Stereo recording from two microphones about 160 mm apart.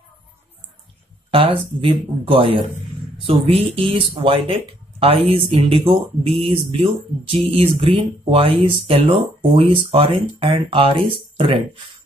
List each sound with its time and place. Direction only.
1.3 s speech: 35° right (ahead or behind)